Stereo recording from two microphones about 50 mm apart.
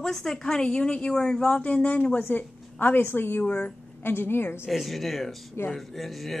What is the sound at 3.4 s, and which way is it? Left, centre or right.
Speech, left.